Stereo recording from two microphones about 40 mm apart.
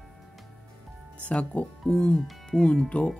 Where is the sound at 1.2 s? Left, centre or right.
Left.